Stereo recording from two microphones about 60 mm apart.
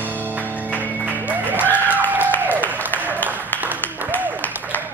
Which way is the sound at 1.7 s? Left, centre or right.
Right.